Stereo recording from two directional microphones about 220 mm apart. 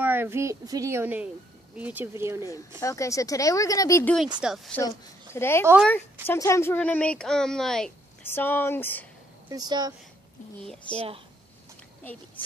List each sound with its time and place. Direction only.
0.0 s a child's voice: 10° right (ahead or behind)
2.8 s speech: 15° left (ahead or behind); by 4.7 s centre (ahead or behind)
4.7 s speech: 10° left (ahead or behind)
9.5 s a child's voice: 20° right (ahead or behind)
10.6 s speech: 5° left (ahead or behind)